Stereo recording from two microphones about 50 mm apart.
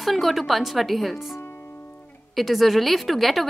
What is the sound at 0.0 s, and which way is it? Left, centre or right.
A woman's voice, centre.